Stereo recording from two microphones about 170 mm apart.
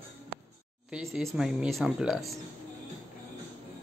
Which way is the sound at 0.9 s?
5° right (ahead or behind).